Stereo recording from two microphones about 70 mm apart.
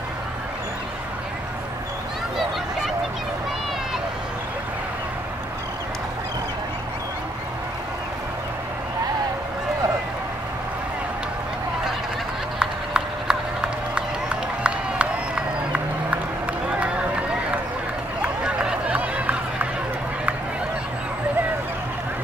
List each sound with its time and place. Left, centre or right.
12.5 s run: centre